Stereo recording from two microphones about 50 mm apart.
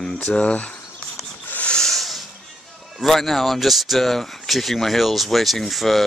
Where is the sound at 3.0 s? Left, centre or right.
Centre.